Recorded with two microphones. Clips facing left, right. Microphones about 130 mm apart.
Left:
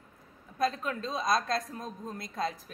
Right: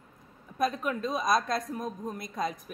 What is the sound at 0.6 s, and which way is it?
A woman's voice, 20° right (ahead or behind).